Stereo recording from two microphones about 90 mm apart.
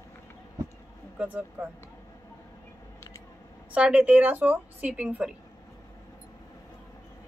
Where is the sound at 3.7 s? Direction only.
15° right (ahead or behind).